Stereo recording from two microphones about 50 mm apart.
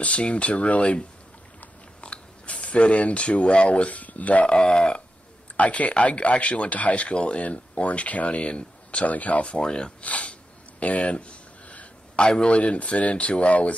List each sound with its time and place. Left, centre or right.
0.0 s speech: left
10.8 s a sound: left
12.3 s speech: left